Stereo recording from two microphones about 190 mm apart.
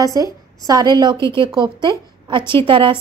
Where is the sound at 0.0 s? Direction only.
20° right (ahead or behind).